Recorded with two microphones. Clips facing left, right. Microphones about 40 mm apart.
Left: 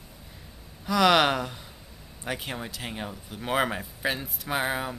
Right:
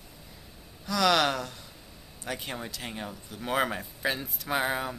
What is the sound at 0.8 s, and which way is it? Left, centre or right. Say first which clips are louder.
Speech: left 4 dB; left.